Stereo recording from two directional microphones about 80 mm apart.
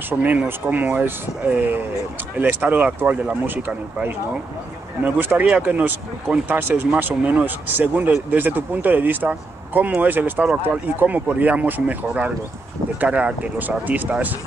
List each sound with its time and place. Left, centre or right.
0.4 s speech: centre